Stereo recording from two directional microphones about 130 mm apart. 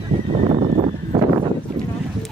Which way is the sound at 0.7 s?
45° right (ahead or behind).